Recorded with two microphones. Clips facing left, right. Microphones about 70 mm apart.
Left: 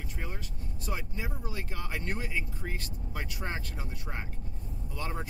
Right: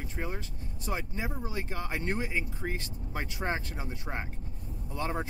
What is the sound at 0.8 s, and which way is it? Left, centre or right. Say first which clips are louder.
Speech: right 3 dB; right.